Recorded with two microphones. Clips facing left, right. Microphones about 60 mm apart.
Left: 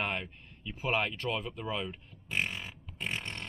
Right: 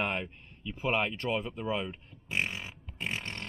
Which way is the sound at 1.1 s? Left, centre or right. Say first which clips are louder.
Right 2 dB; centre.